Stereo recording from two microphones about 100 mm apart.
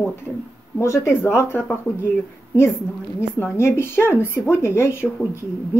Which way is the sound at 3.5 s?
25° left (ahead or behind).